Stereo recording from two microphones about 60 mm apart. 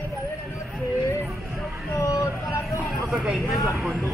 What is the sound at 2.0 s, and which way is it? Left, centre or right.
Vehicle, left.